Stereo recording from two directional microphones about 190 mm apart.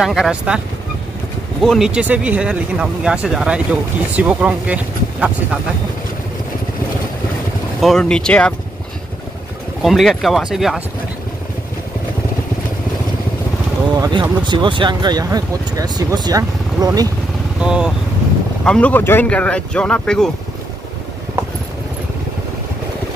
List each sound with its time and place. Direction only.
0.0 s speech: centre (ahead or behind)
1.6 s speech: centre (ahead or behind)
7.8 s speech: 5° left (ahead or behind)
9.8 s speech: centre (ahead or behind)
13.9 s speech: 20° right (ahead or behind)
17.6 s speech: 5° right (ahead or behind)
18.6 s speech: 5° left (ahead or behind)